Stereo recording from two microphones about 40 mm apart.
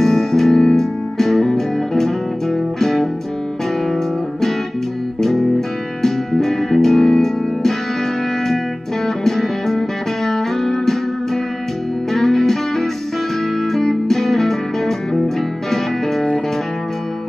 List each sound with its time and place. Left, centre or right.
0.0 s music: centre
5.2 s music: centre
9.0 s music: centre
12.1 s music: centre